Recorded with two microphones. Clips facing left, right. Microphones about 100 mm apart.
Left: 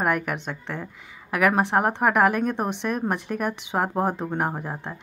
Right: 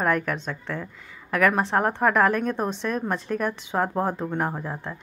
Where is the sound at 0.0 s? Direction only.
15° left (ahead or behind).